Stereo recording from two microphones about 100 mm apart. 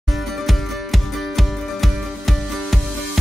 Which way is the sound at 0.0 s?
Centre (ahead or behind).